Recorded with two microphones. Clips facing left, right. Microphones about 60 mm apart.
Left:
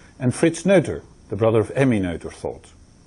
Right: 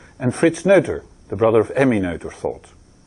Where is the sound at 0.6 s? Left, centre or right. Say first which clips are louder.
Right 3 dB; centre.